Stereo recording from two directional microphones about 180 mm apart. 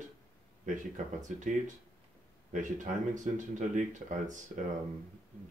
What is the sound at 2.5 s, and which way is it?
Speech, 45° right (ahead or behind).